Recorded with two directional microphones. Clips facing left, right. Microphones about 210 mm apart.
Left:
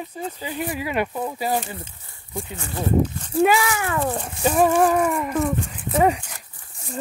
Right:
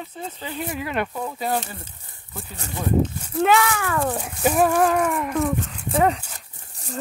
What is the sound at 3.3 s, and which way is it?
Speech, 5° left (ahead or behind).